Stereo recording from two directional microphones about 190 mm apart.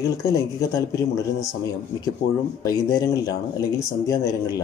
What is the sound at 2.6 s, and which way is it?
Speech, 20° left (ahead or behind).